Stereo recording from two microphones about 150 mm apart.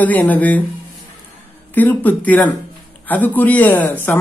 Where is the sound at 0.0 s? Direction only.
10° left (ahead or behind).